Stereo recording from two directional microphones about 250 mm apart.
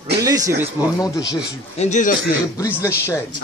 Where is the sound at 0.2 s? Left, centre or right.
Centre.